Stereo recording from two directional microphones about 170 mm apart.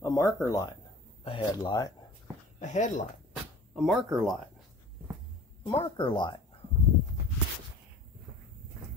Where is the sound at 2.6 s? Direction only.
50° left (ahead or behind).